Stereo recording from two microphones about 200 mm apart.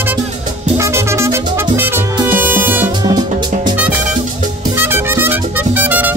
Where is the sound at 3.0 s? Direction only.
20° right (ahead or behind).